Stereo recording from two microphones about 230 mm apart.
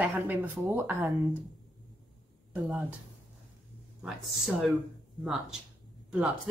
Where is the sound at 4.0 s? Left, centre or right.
Centre.